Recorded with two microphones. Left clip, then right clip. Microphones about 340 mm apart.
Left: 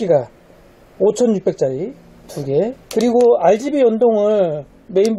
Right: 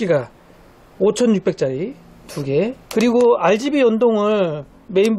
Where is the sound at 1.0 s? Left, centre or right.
Left.